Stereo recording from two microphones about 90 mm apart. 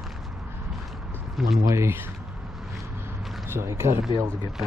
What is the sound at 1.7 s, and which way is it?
Speech, 30° right (ahead or behind).